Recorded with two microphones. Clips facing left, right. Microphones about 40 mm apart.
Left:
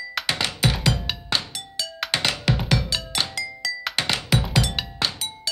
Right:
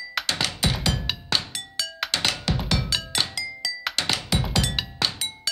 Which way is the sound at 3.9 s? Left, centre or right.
Left.